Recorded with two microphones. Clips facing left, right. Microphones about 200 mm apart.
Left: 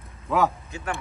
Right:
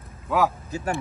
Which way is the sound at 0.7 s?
35° right (ahead or behind).